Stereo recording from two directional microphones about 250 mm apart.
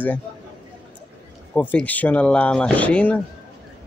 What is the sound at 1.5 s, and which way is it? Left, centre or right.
Speech, centre.